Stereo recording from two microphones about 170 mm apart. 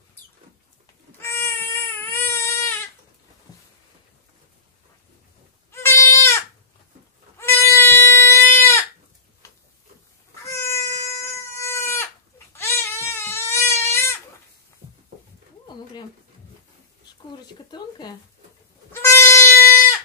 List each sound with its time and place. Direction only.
1.2 s baby cry: 15° left (ahead or behind)
5.7 s goat: 15° left (ahead or behind)
10.4 s goat: 15° left (ahead or behind)
12.5 s crying: 15° left (ahead or behind)
17.6 s a sound: 25° left (ahead or behind)
18.9 s goat: 15° left (ahead or behind)